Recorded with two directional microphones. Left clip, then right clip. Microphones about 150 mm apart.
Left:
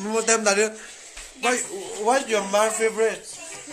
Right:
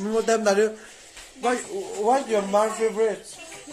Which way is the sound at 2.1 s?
25° right (ahead or behind).